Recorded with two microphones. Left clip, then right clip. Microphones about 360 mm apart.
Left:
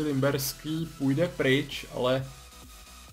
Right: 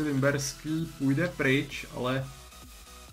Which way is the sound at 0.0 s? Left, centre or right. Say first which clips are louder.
Even; centre.